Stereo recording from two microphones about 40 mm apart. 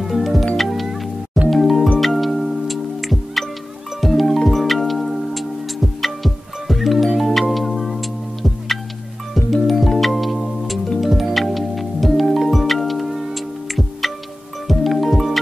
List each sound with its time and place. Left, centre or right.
0.0 s music: centre